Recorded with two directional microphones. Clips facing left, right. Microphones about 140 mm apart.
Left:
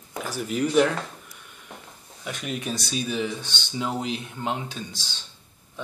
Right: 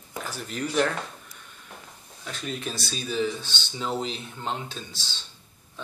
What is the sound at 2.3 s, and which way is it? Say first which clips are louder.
Speech: left 3 dB; 15° left (ahead or behind).